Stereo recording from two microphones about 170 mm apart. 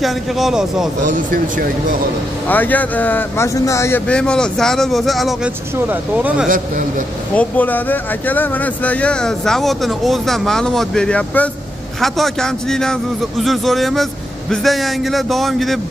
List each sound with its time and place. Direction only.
0.0 s speech: centre (ahead or behind)
1.0 s speech: 55° right (ahead or behind)
2.4 s speech: 10° left (ahead or behind)
4.1 s speech: 5° left (ahead or behind)
7.3 s speech: 10° left (ahead or behind)